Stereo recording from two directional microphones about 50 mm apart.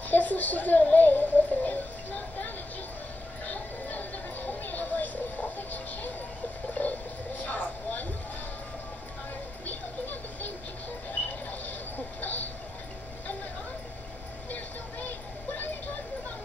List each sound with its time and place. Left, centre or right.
0.1 s a woman's voice: left
0.8 s music: left
3.4 s a sound: left
14.5 s music: left